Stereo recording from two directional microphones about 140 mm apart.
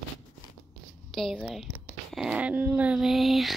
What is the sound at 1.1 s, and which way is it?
Speech, centre (ahead or behind).